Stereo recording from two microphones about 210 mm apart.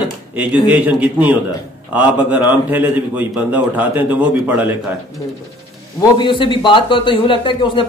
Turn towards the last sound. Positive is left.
turn(degrees=25)  # may be behind; listen again after turning